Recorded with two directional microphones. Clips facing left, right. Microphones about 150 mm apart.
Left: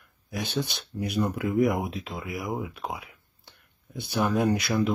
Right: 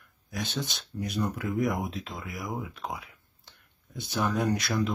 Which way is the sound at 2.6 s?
10° left (ahead or behind).